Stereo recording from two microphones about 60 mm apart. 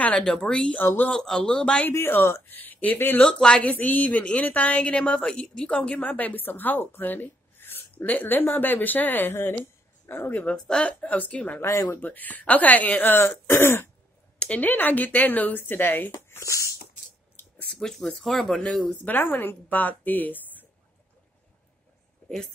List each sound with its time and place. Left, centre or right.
0.0 s a man's voice: centre
1.9 s speech: left
2.5 s speech: left
3.3 s a man's voice: centre
3.6 s a woman's voice: left
10.5 s a woman's voice: centre
11.6 s speech: left
12.0 s a woman's voice: left
14.4 s a woman's voice: left
16.3 s speech: left
17.4 s a sound: left
17.7 s a man's voice: centre
19.0 s speech: left